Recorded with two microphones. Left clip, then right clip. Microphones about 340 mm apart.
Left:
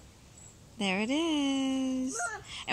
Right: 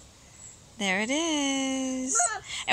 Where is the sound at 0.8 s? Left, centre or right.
Centre.